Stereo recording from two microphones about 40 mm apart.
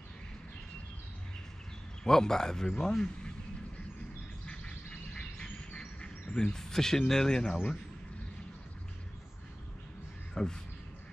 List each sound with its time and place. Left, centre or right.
2.0 s a man's voice: centre
4.5 s a sound: left
5.8 s duck: left
6.6 s a man's voice: centre
7.5 s speech: left
10.3 s speech: centre